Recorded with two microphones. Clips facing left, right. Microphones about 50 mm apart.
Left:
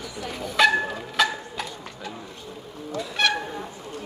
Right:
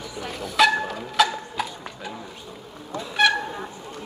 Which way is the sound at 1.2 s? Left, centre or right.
Centre.